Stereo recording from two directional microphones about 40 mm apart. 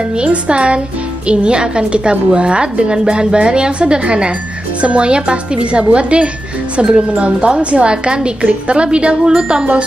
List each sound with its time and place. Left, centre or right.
0.2 s a woman's voice: right